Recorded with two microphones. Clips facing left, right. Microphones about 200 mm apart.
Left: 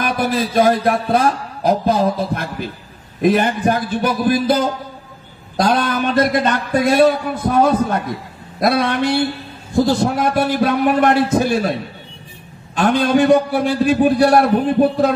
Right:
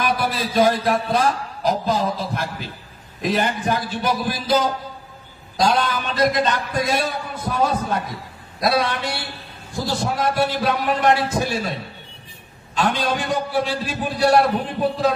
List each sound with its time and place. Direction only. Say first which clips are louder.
0.0 s a man's voice: left 4 dB; 50° left (ahead or behind)
12.7 s a man's voice: left 7 dB; 55° left (ahead or behind)